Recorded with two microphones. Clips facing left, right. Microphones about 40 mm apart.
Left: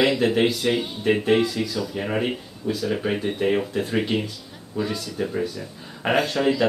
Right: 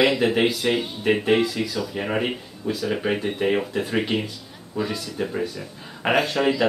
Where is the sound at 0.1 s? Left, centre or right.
Centre.